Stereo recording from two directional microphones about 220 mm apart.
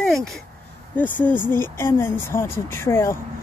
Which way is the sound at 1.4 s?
10° left (ahead or behind).